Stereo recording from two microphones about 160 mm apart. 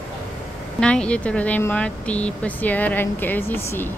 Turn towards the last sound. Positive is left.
turn(degrees=10)  # may be behind; listen again after turning